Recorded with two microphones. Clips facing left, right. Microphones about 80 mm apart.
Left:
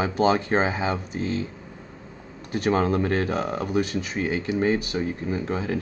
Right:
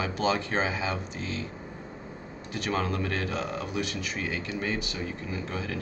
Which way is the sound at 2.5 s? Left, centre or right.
Left.